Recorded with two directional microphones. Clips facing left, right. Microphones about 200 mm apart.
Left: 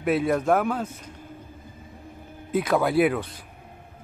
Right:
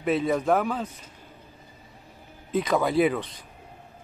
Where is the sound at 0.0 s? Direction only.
5° left (ahead or behind).